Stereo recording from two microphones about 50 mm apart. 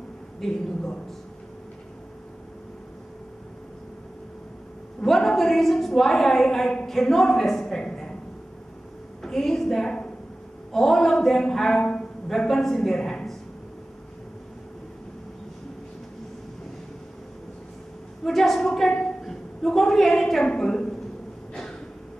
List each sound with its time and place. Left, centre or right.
0.4 s a woman's voice: centre
5.0 s a woman's voice: centre
9.2 s a woman's voice: centre
11.8 s a sound: centre
12.3 s a man's voice: centre
18.2 s a woman's voice: centre
19.0 s a sound: centre